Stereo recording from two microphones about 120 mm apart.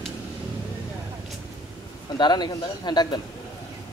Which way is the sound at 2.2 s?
35° left (ahead or behind).